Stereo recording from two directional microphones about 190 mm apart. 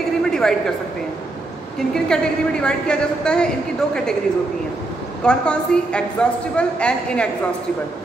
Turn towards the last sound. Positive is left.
turn(degrees=5)  # may be behind; listen again after turning